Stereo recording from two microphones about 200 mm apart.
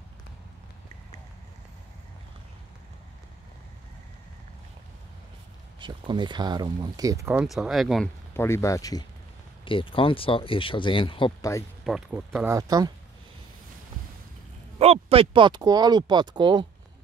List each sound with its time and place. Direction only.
5.8 s speech: 25° right (ahead or behind)
7.4 s speech: centre (ahead or behind)
8.4 s speech: 15° left (ahead or behind)
11.8 s speech: centre (ahead or behind)
12.4 s speech: 15° right (ahead or behind)
14.8 s speech: 30° right (ahead or behind)